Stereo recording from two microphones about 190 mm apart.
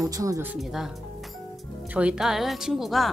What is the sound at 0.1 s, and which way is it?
Speech, 15° right (ahead or behind).